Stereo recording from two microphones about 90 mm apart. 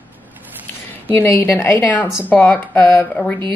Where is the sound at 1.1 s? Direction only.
25° left (ahead or behind).